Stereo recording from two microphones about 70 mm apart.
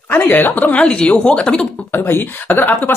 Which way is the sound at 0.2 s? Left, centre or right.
Left.